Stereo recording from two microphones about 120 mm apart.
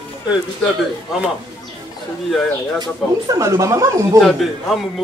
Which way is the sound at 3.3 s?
25° right (ahead or behind).